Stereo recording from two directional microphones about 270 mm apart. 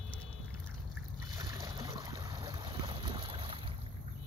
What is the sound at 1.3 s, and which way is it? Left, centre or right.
Boat, centre.